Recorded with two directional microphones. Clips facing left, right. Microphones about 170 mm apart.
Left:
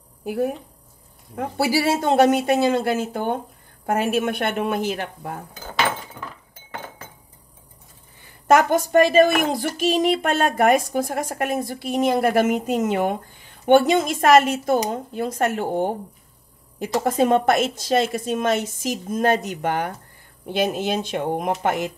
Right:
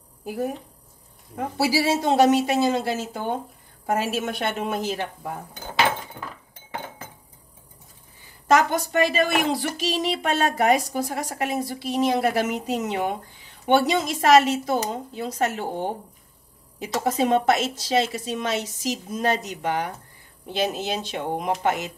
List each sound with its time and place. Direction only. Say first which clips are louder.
1.6 s a woman's voice: left 1 dB; 55° left (ahead or behind)
8.5 s speech: left 3 dB; 50° left (ahead or behind)